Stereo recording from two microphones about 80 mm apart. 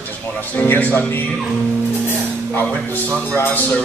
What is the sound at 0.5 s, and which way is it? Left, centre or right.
Speech, left.